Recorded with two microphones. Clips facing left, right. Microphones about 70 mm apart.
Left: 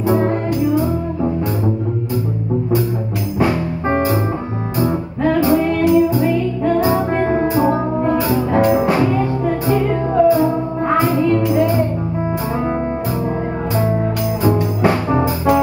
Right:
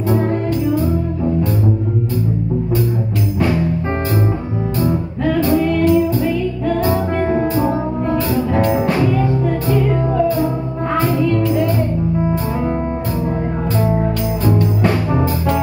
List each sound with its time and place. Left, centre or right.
4.7 s music: centre
14.4 s music: centre